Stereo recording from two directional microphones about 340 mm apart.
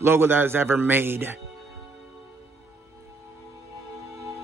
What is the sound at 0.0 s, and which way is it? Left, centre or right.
Speech, centre.